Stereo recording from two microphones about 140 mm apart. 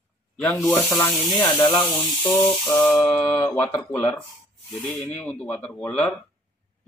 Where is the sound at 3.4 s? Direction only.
20° left (ahead or behind).